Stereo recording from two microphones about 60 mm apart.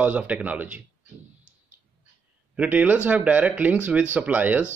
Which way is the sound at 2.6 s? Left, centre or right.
Right.